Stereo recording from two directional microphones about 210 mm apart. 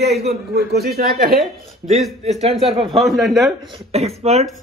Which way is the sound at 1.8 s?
35° right (ahead or behind).